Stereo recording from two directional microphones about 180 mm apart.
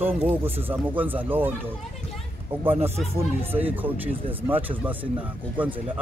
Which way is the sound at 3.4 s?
10° right (ahead or behind).